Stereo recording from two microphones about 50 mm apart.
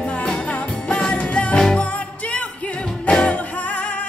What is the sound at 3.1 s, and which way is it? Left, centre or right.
Music, centre.